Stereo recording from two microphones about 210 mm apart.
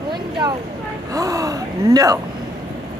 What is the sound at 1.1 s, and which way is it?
Gasp, 15° right (ahead or behind).